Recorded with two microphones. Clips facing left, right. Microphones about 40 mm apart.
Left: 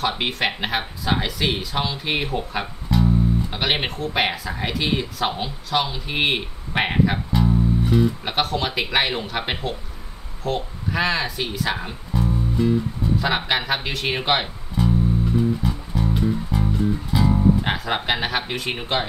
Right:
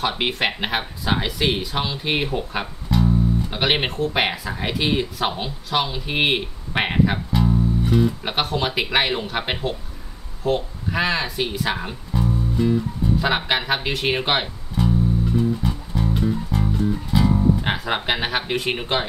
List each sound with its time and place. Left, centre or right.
0.2 s speech: centre
10.4 s music: centre
17.3 s speech: centre